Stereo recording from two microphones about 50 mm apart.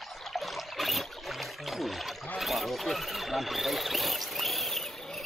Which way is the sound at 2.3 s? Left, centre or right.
Centre.